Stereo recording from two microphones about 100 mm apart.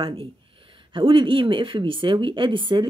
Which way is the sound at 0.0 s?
65° right (ahead or behind).